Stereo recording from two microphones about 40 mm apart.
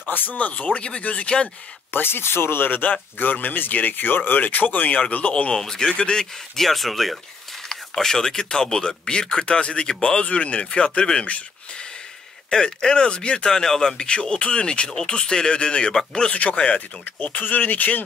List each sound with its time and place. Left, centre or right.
0.1 s speech: left
0.6 s speech: left
1.9 s speech: left
5.5 s speech: centre
6.5 s speech: centre
7.7 s speech: centre
10.2 s speech: left
12.4 s speech: centre
13.5 s speech: centre
15.9 s speech: centre
16.3 s speech: left
17.0 s speech: left